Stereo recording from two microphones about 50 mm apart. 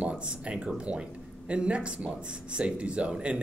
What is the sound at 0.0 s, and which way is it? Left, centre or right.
Speech, right.